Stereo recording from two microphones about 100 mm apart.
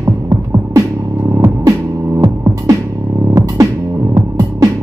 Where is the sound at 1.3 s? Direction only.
40° right (ahead or behind).